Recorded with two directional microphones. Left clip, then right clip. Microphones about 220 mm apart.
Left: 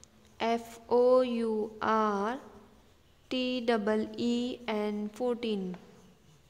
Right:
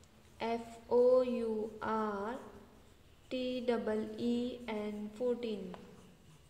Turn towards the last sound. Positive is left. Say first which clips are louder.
# left 4 dB
turn(degrees=35)  # may be behind; listen again after turning